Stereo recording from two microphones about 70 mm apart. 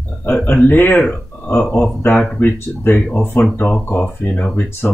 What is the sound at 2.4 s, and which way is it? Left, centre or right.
A man's voice, left.